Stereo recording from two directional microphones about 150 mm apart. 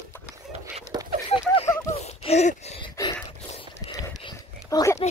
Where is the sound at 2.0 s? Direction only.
45° left (ahead or behind).